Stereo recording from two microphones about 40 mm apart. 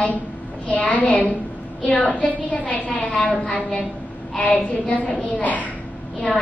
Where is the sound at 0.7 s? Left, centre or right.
Left.